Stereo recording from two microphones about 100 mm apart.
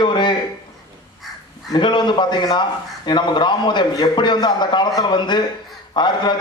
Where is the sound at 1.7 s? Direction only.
50° left (ahead or behind).